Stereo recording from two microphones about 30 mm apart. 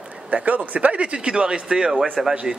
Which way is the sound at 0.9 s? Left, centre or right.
Right.